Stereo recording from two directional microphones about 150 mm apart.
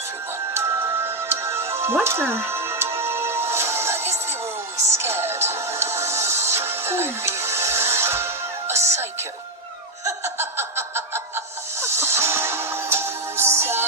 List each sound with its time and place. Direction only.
0.6 s music: 15° right (ahead or behind)
10.0 s laughter: 15° right (ahead or behind)
11.8 s music: 15° right (ahead or behind)